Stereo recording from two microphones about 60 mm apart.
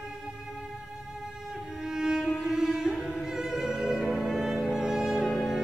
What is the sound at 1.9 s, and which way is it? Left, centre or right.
Music, centre.